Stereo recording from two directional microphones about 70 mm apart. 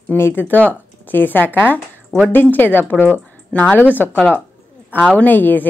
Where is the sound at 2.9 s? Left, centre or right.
Centre.